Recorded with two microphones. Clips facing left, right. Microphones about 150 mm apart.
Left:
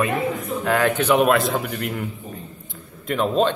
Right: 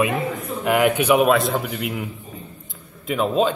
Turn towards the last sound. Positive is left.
turn(degrees=-5)  # may be behind; listen again after turning